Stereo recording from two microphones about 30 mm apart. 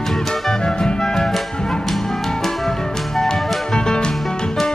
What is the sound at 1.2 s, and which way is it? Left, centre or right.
Music, centre.